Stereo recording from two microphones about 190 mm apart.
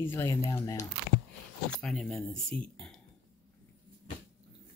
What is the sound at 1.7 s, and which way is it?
Speech, 5° left (ahead or behind).